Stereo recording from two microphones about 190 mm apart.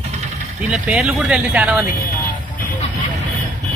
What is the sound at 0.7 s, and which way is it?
Speech, 5° right (ahead or behind).